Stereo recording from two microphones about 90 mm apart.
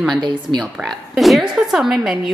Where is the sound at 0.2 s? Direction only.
55° right (ahead or behind).